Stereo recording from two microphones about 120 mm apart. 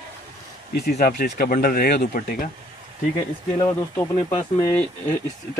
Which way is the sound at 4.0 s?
20° left (ahead or behind).